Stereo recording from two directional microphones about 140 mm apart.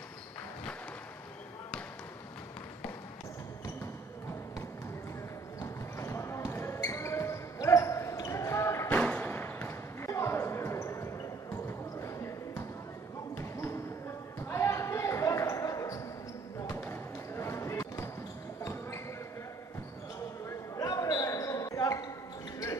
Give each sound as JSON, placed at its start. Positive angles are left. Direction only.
{"t": 5.6, "sound": "basketball bounce", "side_deg": 20}
{"t": 20.4, "sound": "basketball bounce", "side_deg": 25}